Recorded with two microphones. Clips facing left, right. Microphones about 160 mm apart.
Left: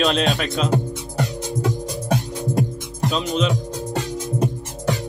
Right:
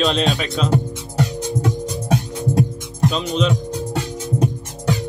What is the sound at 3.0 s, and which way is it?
Speech, centre (ahead or behind).